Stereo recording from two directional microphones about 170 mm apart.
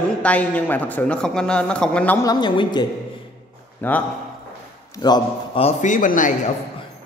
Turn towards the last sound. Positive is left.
turn(degrees=50)  # may be behind; listen again after turning